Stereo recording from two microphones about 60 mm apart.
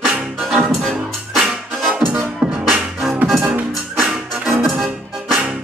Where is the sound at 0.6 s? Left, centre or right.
Centre.